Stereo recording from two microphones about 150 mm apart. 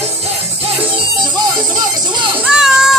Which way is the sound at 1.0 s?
25° right (ahead or behind).